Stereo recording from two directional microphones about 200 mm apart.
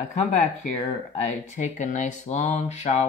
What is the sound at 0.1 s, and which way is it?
Speech, 35° left (ahead or behind).